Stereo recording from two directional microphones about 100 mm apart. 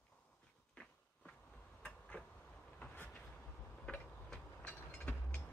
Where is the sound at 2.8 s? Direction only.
15° left (ahead or behind).